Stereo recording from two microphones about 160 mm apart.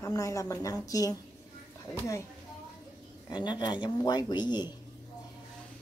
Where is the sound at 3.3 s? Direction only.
25° left (ahead or behind).